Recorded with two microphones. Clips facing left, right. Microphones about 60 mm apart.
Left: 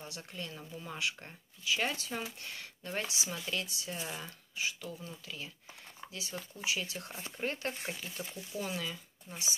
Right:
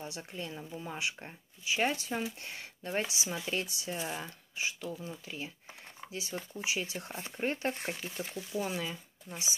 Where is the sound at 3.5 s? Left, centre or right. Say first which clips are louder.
Right 3 dB; right.